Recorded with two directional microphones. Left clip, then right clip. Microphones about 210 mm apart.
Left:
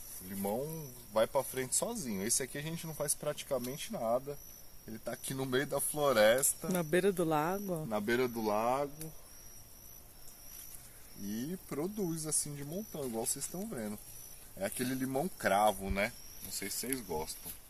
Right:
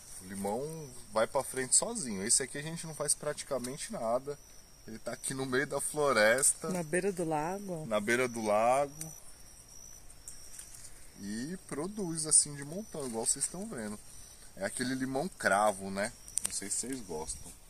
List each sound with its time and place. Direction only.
0.3 s a sound: centre (ahead or behind)
1.1 s speech: centre (ahead or behind)
6.7 s speech: 15° left (ahead or behind)
7.9 s speech: 40° right (ahead or behind)
11.2 s speech: centre (ahead or behind)